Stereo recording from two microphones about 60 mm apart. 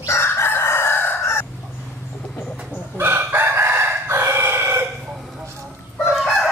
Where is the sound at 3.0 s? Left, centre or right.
Right.